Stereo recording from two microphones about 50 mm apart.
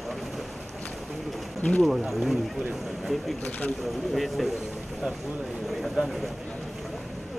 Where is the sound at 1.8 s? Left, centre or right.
Centre.